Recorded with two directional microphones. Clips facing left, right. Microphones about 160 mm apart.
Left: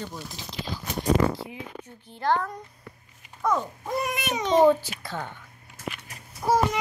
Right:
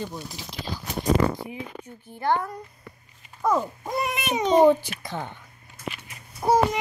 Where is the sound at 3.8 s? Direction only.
15° right (ahead or behind).